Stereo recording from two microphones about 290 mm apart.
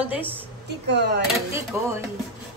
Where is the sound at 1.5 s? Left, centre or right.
Centre.